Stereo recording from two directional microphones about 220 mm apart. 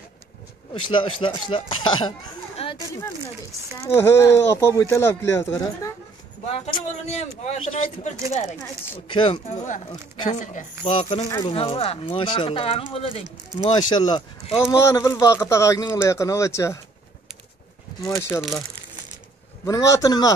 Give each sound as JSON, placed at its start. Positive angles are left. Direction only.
{"t": 1.2, "sound": "speech", "side_deg": 25}
{"t": 3.9, "sound": "speech", "side_deg": 10}
{"t": 6.5, "sound": "speech", "side_deg": 30}
{"t": 10.4, "sound": "speech", "side_deg": 35}
{"t": 14.9, "sound": "speech", "side_deg": 15}
{"t": 18.0, "sound": "speech", "side_deg": 15}
{"t": 19.6, "sound": "speech", "side_deg": 15}